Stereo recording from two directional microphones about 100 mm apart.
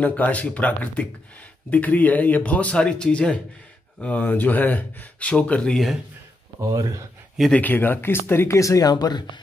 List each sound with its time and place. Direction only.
0.0 s speech: 15° left (ahead or behind)
6.6 s speech: 35° right (ahead or behind)
7.5 s speech: 15° left (ahead or behind); by 9.4 s 45° left (ahead or behind)